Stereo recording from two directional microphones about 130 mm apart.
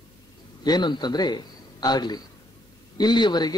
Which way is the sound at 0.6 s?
35° left (ahead or behind).